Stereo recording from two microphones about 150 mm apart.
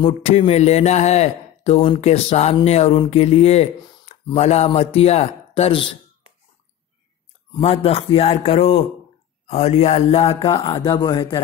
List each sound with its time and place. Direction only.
0.0 s a man's voice: 40° left (ahead or behind)
7.6 s a man's voice: 40° left (ahead or behind)
10.8 s speech: 25° left (ahead or behind)